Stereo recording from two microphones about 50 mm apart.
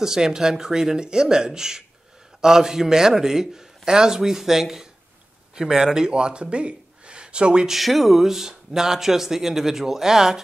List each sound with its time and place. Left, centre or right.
0.0 s speech: centre
7.7 s speech: centre